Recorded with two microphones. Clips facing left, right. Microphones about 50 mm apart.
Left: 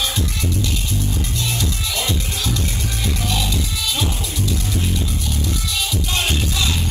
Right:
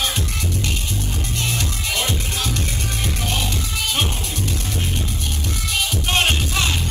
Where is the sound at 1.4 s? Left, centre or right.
Right.